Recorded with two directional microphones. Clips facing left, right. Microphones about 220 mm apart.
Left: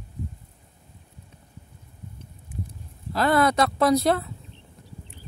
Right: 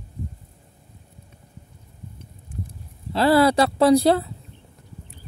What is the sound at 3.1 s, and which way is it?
Speech, 30° right (ahead or behind).